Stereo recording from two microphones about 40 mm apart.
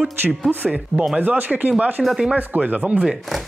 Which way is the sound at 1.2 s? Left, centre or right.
Right.